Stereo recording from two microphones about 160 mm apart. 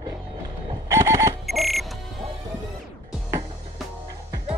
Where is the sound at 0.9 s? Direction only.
20° right (ahead or behind).